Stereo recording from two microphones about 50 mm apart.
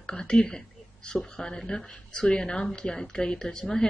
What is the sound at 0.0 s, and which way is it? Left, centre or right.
A woman's voice, centre.